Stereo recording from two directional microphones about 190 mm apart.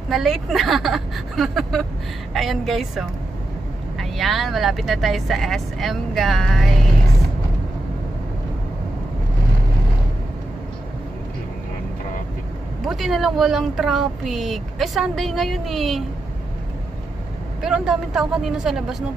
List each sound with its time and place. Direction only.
0.1 s speech: centre (ahead or behind)
12.8 s speech: centre (ahead or behind)
17.6 s speech: 5° right (ahead or behind)